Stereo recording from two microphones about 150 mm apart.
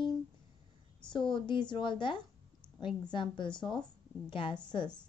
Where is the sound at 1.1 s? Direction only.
30° left (ahead or behind).